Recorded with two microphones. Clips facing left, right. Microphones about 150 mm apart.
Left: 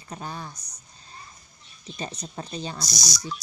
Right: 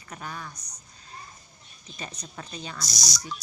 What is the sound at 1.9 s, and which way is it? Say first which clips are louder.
Speech: left 5 dB; 30° left (ahead or behind).